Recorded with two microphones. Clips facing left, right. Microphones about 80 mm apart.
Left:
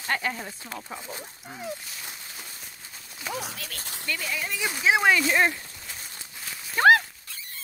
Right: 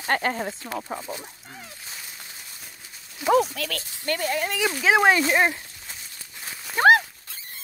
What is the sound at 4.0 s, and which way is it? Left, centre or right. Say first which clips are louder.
Speech: right 6 dB; right.